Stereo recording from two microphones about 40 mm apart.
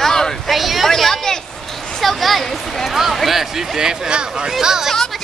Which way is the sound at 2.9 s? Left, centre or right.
Centre.